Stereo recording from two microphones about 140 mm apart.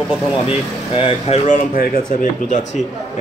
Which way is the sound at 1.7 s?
80° left.